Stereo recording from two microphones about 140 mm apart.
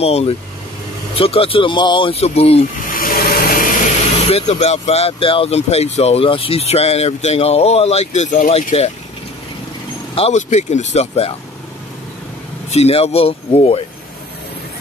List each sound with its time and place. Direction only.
0.0 s speech: 45° left (ahead or behind)
2.9 s a sound: 90° left
4.3 s speech: 50° left (ahead or behind)
8.7 s speech: 45° left (ahead or behind)
10.1 s speech: 50° left (ahead or behind)
12.6 s speech: 50° left (ahead or behind)